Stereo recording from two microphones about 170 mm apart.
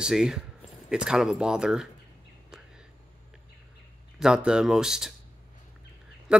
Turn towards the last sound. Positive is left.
turn(degrees=-5)  # may be behind; listen again after turning